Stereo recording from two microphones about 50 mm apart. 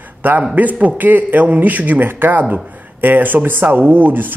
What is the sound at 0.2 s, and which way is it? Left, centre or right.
A man's voice, right.